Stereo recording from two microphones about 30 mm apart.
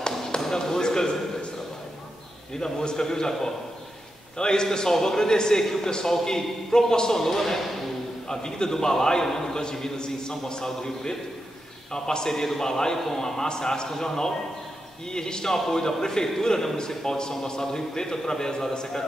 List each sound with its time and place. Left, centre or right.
0.0 s basketball bounce: left
2.6 s a man's voice: left
4.4 s a man's voice: left
8.3 s a man's voice: left